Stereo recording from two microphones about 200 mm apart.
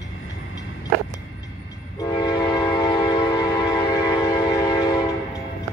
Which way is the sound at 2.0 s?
20° left (ahead or behind).